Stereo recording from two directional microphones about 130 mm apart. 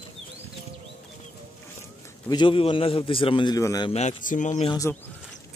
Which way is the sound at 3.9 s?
60° left (ahead or behind).